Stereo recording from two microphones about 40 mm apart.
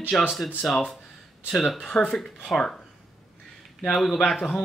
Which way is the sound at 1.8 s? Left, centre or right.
Left.